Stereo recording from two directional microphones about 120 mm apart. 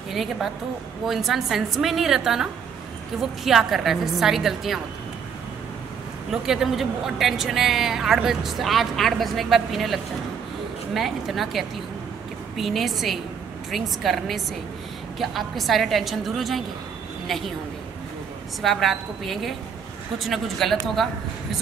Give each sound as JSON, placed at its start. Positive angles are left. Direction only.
{"t": 0.1, "sound": "a woman's voice", "side_deg": 0}
{"t": 6.3, "sound": "a woman's voice", "side_deg": -5}
{"t": 18.6, "sound": "a woman's voice", "side_deg": 0}